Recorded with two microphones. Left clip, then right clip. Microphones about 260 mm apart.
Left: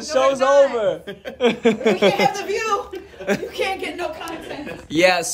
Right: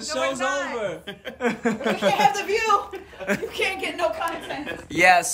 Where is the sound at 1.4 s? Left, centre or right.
Left.